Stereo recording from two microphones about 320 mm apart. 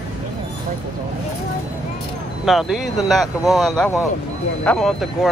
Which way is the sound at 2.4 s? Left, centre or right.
Centre.